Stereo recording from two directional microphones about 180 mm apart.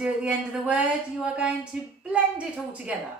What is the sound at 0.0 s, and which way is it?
A woman's voice, 5° right (ahead or behind).